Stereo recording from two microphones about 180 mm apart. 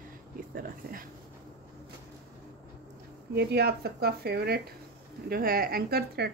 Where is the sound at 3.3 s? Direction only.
65° right (ahead or behind).